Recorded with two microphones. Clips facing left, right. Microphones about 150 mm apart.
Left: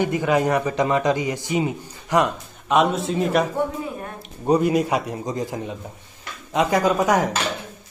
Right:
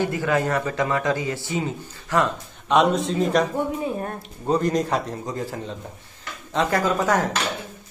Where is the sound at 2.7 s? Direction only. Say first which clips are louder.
Even; centre (ahead or behind).